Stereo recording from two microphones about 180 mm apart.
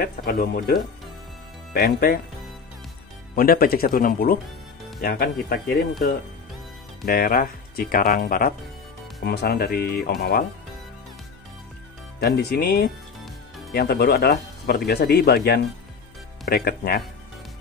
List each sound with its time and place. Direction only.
0.0 s speech: 55° left (ahead or behind)
3.3 s speech: 55° left (ahead or behind)
5.0 s speech: 70° left (ahead or behind)
7.1 s speech: 55° left (ahead or behind)
9.2 s speech: 65° left (ahead or behind)
12.2 s speech: 70° left (ahead or behind)